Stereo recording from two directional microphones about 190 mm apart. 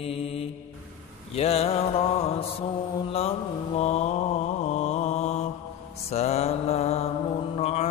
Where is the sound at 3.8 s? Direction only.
35° left (ahead or behind).